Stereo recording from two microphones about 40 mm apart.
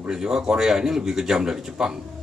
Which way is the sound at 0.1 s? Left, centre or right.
Centre.